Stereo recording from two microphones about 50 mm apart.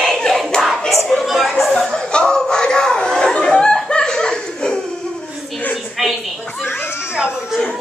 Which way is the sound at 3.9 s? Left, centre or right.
Centre.